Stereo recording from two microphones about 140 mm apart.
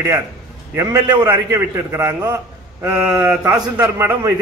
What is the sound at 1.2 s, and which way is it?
A man's voice, 15° right (ahead or behind).